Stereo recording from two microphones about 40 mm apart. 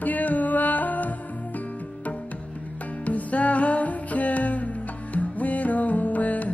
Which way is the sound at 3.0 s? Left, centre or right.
Left.